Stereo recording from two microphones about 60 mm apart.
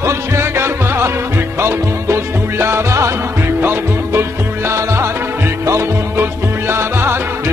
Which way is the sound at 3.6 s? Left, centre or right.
Right.